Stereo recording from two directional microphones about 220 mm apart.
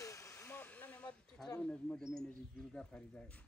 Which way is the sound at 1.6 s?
5° left (ahead or behind).